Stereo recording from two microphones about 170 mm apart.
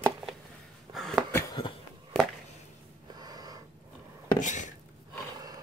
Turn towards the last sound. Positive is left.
turn(degrees=45)  # may be behind; listen again after turning